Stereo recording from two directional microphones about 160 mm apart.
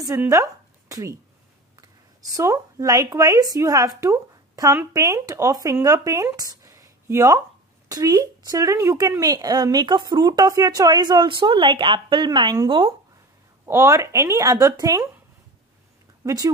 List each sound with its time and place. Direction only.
0.0 s a sound: 20° right (ahead or behind)
1.8 s speech: 20° right (ahead or behind)
13.7 s speech: 20° right (ahead or behind)